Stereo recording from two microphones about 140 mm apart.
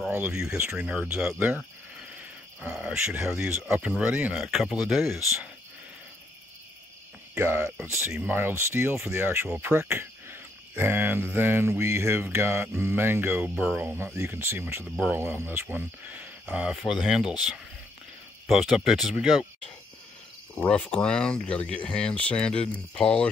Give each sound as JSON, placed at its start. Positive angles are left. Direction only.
{"t": 0.1, "sound": "a sound", "side_deg": -10}
{"t": 0.5, "sound": "cricket", "side_deg": -5}
{"t": 2.6, "sound": "speech", "side_deg": -5}
{"t": 7.3, "sound": "cricket", "side_deg": -15}
{"t": 18.5, "sound": "speech", "side_deg": 0}
{"t": 20.5, "sound": "speech", "side_deg": 10}